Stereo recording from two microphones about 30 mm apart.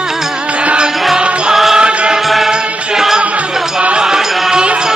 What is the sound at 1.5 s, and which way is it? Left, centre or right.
Music, centre.